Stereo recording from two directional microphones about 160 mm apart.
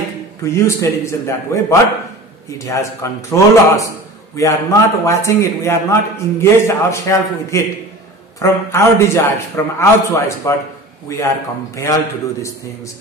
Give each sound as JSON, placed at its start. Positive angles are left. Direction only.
{"t": 0.4, "sound": "a man's voice", "side_deg": 20}